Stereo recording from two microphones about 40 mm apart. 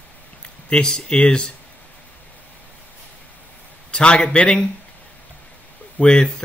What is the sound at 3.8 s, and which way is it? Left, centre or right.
Speech, left.